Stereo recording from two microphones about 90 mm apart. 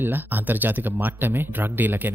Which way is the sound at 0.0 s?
20° right (ahead or behind).